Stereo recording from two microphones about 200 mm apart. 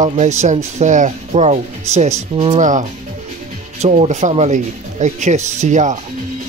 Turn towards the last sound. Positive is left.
turn(degrees=-35)  # may be behind; listen again after turning